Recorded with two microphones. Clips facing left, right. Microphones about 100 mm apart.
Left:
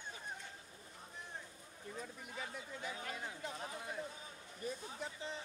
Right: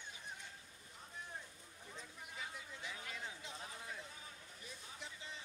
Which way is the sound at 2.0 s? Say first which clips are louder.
Left 4 dB; 45° left (ahead or behind).